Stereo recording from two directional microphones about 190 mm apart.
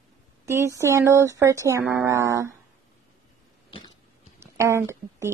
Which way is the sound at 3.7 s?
25° left (ahead or behind).